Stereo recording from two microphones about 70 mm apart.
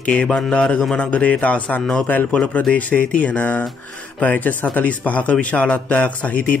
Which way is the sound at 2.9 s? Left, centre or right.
Centre.